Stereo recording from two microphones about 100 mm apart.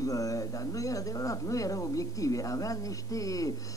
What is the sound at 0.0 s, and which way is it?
Speech, 35° left (ahead or behind).